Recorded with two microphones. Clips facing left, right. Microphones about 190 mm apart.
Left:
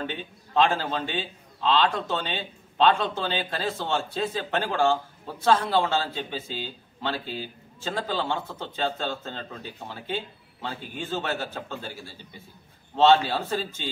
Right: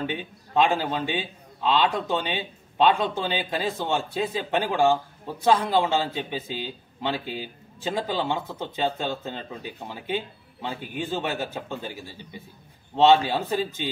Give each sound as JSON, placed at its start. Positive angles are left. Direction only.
{"t": 0.0, "sound": "a man's voice", "side_deg": -15}